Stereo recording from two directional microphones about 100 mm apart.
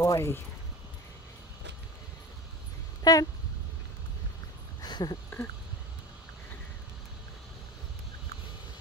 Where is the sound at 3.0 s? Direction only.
35° left (ahead or behind).